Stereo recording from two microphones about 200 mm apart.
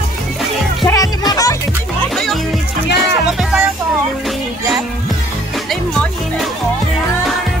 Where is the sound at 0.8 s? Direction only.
15° left (ahead or behind).